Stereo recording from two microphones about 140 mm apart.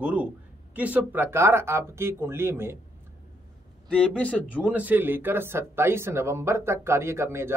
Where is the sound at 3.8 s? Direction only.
5° left (ahead or behind).